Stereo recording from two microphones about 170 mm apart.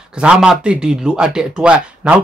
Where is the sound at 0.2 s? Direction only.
5° right (ahead or behind).